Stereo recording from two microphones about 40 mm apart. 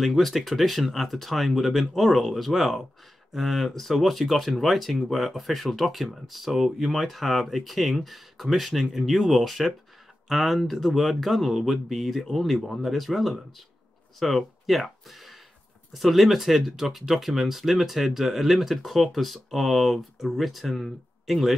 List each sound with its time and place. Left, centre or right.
0.0 s speech: centre